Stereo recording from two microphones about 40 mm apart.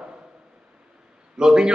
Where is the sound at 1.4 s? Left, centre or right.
Centre.